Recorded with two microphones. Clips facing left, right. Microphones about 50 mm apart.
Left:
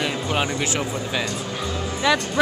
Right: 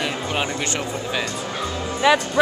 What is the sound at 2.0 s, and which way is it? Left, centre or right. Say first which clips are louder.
Speech: right 3 dB; centre.